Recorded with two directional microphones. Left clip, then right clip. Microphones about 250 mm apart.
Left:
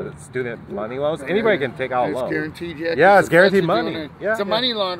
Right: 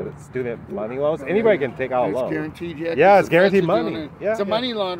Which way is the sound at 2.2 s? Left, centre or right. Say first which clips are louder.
Left 2 dB; right.